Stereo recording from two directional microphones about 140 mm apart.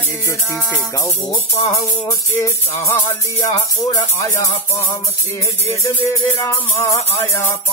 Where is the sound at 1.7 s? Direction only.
20° left (ahead or behind).